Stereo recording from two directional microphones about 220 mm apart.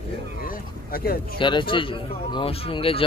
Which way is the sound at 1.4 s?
20° left (ahead or behind).